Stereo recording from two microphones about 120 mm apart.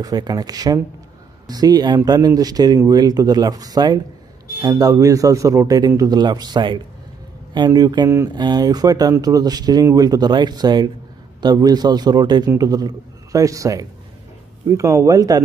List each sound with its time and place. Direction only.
0.0 s a man's voice: 30° right (ahead or behind)